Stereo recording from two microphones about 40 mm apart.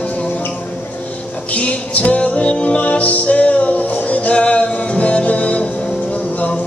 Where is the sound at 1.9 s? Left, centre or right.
Left.